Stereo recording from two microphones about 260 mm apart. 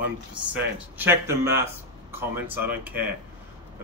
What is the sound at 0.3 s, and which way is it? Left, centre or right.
Speech, centre.